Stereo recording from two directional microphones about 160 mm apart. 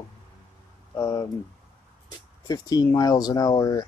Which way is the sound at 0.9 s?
20° left (ahead or behind).